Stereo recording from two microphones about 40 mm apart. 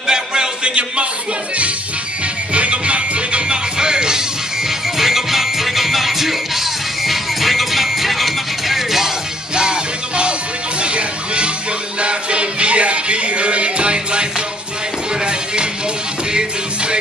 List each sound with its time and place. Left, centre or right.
0.0 s music: centre
2.5 s music: right
4.6 s music: centre
9.6 s music: right
15.2 s music: right